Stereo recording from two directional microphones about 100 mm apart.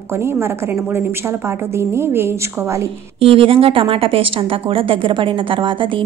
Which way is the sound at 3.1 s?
70° right (ahead or behind).